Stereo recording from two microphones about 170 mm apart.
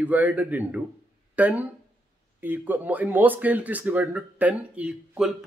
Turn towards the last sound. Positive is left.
turn(degrees=-5)  # may be behind; listen again after turning